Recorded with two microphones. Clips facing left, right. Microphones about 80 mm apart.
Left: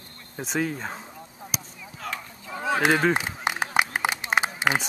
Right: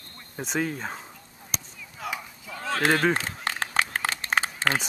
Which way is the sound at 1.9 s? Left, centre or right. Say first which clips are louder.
Right 1 dB; centre.